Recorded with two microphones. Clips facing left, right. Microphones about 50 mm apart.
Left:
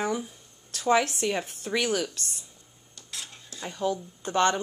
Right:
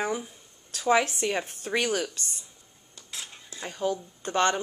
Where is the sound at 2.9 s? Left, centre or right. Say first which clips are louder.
Even; centre.